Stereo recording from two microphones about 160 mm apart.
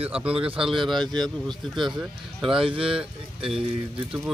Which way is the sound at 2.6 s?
35° right (ahead or behind).